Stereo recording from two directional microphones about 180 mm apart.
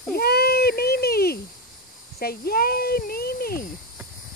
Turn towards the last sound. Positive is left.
turn(degrees=55)  # may be behind; listen again after turning